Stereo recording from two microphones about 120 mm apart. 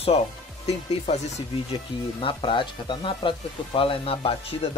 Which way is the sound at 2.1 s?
45° left (ahead or behind).